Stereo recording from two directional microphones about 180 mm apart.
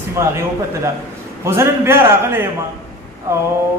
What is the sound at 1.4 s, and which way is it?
A man's voice, 15° right (ahead or behind).